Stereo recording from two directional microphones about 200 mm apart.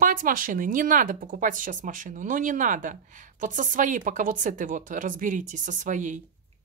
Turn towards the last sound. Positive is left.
turn(degrees=-40)  # may be behind; listen again after turning